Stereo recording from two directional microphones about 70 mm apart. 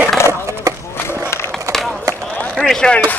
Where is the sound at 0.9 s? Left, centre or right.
Left.